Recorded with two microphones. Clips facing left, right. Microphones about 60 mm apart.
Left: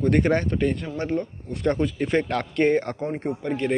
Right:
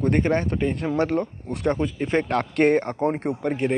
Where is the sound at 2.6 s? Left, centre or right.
Right.